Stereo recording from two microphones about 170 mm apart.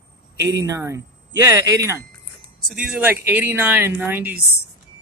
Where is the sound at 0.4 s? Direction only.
20° right (ahead or behind).